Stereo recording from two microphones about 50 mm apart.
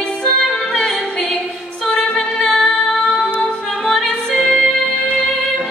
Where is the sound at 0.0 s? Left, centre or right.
Centre.